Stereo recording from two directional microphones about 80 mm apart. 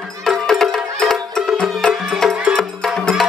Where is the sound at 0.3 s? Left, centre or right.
Centre.